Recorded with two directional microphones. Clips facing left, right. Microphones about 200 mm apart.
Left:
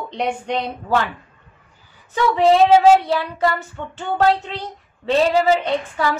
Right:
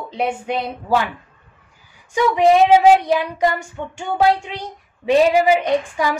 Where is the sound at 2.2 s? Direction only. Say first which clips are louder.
Right 1 dB; 15° right (ahead or behind).